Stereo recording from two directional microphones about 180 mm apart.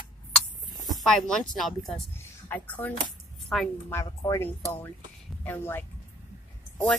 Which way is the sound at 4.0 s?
15° left (ahead or behind).